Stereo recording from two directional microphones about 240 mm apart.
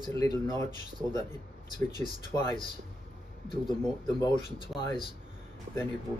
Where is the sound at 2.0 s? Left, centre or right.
Centre.